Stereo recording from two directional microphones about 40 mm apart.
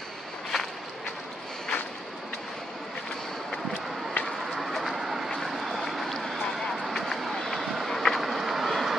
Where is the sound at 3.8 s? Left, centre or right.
Centre.